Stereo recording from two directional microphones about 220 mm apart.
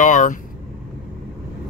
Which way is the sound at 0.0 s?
35° left (ahead or behind).